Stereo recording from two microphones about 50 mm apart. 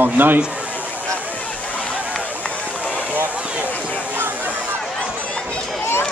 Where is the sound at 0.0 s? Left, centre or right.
Right.